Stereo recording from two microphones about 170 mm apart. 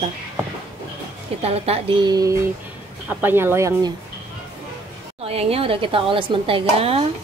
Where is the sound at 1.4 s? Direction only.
35° right (ahead or behind).